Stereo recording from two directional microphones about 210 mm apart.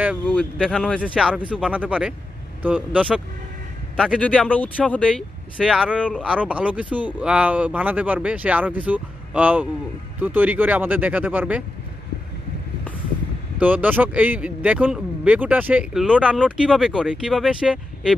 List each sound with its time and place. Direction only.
0.3 s speech: 5° left (ahead or behind)
13.6 s speech: 5° right (ahead or behind)